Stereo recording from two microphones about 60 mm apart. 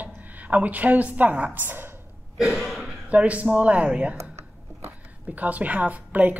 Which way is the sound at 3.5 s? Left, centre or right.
Centre.